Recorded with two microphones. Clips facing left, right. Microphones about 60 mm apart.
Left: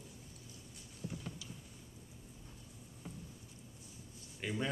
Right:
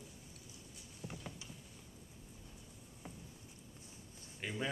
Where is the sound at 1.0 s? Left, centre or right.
Right.